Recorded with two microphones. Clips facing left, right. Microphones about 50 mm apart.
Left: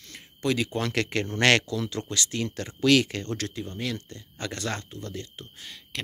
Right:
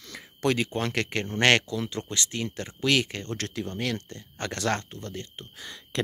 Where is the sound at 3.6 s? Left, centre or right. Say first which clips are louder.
Right 2 dB; right.